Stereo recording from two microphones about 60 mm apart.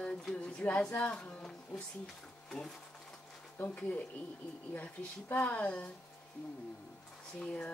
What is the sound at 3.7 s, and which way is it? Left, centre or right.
Speech, left.